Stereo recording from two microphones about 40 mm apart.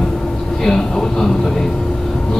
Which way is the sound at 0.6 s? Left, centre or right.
Centre.